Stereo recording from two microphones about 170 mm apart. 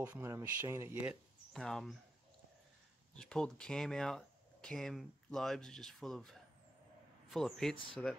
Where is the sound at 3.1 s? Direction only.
5° left (ahead or behind).